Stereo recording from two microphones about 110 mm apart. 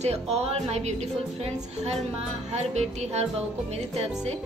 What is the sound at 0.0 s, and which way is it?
Speech, 70° right (ahead or behind).